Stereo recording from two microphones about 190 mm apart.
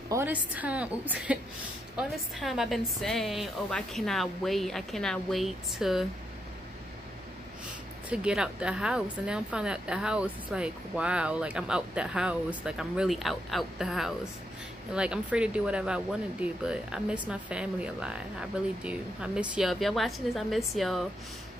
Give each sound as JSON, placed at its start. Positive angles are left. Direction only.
{"t": 0.1, "sound": "a woman's voice", "side_deg": -10}
{"t": 8.1, "sound": "speech", "side_deg": -5}